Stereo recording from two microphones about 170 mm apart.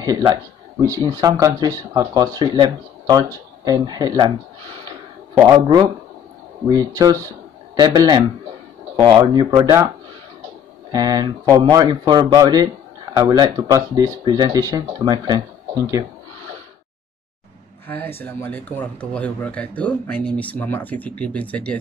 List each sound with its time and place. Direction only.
0.0 s speech: 20° right (ahead or behind)
5.3 s speech: 20° right (ahead or behind)
10.9 s speech: 20° right (ahead or behind)
17.8 s speech: 10° left (ahead or behind)